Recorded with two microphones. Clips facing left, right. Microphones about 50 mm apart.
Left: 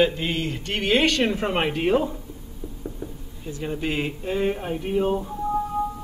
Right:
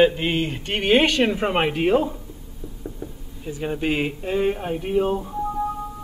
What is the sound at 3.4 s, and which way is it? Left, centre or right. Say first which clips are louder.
Speech: right 3 dB; centre.